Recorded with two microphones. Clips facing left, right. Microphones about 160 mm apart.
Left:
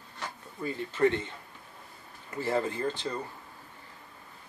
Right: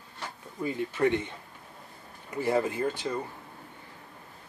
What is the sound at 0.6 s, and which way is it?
Speech, 15° right (ahead or behind).